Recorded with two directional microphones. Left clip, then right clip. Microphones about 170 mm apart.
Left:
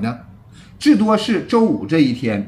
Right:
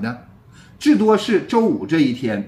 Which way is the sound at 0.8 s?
10° left (ahead or behind).